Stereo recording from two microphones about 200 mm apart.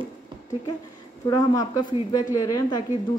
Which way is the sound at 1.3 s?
20° left (ahead or behind).